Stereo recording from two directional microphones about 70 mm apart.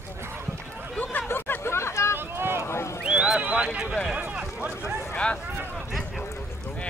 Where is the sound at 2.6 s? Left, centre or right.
Left.